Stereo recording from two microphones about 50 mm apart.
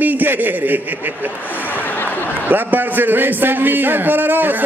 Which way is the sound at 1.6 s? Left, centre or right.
Right.